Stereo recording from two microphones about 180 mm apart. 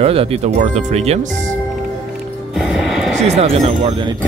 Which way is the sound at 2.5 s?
5° right (ahead or behind).